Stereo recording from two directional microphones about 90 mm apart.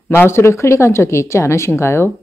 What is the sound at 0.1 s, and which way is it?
Speech, 25° left (ahead or behind).